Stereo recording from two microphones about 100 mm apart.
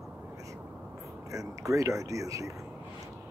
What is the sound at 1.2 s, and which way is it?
Speech, 35° right (ahead or behind).